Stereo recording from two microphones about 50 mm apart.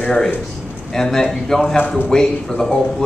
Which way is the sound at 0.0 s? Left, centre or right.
Centre.